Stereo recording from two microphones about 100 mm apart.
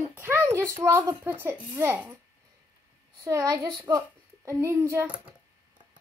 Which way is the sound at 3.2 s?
40° right (ahead or behind).